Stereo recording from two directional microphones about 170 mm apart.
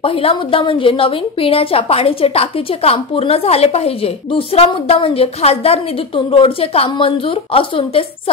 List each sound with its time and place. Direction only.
0.0 s a woman's voice: 35° left (ahead or behind)